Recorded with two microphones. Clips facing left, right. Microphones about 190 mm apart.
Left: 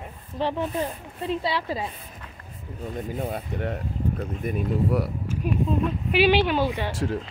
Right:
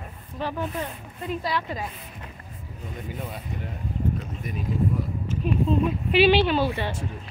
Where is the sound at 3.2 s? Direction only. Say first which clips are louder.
Left 6 dB; 60° left (ahead or behind).